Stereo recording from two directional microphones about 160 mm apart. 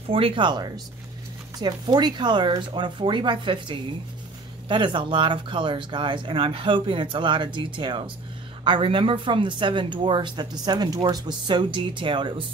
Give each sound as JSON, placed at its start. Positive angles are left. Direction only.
{"t": 0.1, "sound": "speech", "side_deg": -30}